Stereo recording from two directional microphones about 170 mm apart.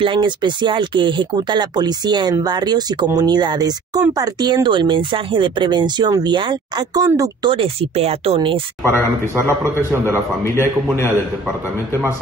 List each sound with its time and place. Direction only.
0.0 s speech: 30° right (ahead or behind)
8.8 s a man's voice: 15° right (ahead or behind)